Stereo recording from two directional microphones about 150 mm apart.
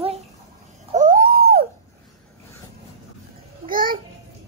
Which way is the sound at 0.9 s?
60° right (ahead or behind).